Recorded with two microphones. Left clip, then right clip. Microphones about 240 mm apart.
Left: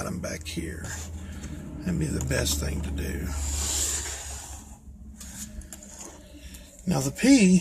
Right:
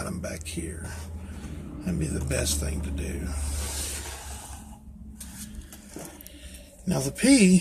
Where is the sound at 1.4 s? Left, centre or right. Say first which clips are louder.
Even; centre.